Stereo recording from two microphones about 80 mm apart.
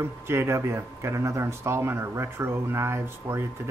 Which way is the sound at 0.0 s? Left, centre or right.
Right.